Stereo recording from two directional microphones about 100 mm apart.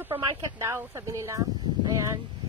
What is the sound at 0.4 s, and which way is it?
Speech, 30° right (ahead or behind).